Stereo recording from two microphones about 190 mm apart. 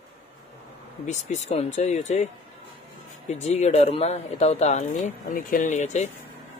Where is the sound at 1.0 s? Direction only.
35° left (ahead or behind).